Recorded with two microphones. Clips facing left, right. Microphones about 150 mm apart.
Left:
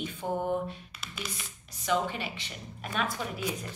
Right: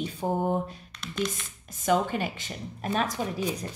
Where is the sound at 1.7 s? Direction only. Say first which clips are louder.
Right 5 dB; 50° right (ahead or behind).